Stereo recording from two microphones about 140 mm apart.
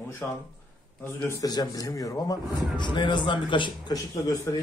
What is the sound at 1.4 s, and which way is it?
A man's voice, 30° left (ahead or behind).